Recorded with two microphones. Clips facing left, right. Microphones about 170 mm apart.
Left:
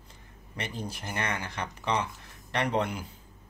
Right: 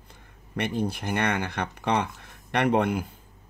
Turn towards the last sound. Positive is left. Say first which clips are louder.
# right 6 dB
turn(degrees=-55)  # may be behind; listen again after turning